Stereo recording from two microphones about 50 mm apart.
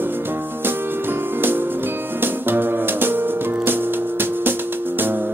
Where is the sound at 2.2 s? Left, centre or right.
Right.